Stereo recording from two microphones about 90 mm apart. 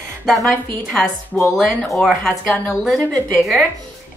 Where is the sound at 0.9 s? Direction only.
5° left (ahead or behind).